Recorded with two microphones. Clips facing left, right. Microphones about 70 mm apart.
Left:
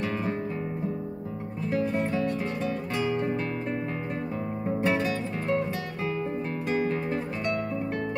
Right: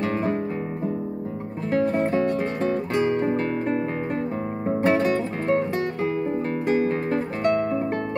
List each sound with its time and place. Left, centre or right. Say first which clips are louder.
0.0 s music: right 5 dB; right
1.7 s music: right 6 dB; right
4.7 s music: right 6 dB; right
6.7 s music: right 5 dB; right